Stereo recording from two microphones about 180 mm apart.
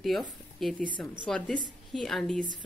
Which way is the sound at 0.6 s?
Centre (ahead or behind).